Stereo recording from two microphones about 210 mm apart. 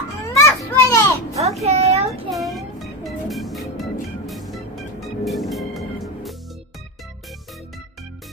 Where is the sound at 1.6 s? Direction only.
30° right (ahead or behind).